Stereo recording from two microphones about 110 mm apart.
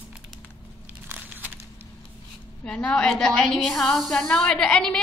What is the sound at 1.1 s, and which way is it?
Crumpling, 15° right (ahead or behind).